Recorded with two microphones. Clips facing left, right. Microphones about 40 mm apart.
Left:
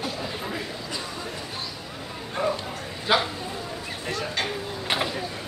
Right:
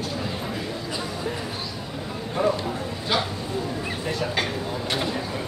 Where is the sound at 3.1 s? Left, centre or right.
Centre.